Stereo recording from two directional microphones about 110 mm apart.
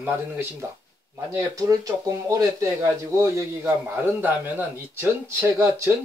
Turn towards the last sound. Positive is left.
turn(degrees=-20)  # may be behind; listen again after turning